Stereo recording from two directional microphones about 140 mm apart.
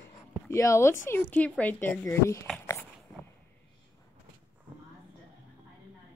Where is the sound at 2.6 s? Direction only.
20° left (ahead or behind).